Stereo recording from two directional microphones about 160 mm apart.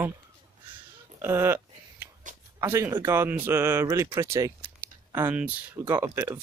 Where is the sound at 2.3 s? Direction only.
55° right (ahead or behind).